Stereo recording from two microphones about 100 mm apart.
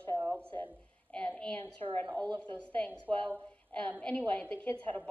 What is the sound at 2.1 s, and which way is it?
Speech, 45° right (ahead or behind).